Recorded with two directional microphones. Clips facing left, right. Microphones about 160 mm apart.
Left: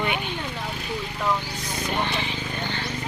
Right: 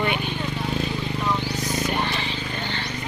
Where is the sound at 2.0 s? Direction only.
15° left (ahead or behind).